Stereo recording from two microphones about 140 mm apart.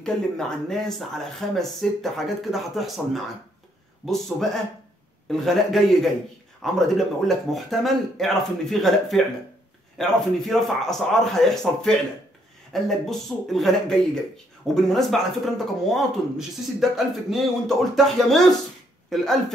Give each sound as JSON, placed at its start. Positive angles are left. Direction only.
{"t": 0.0, "sound": "speech", "side_deg": 5}